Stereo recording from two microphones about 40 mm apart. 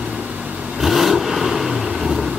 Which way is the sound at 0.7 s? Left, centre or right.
Centre.